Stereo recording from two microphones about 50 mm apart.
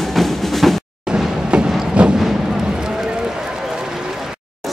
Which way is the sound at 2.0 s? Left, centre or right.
Right.